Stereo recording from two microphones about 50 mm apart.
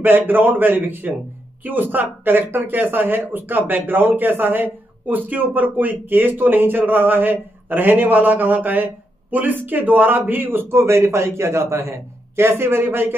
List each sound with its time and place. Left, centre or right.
0.0 s speech: right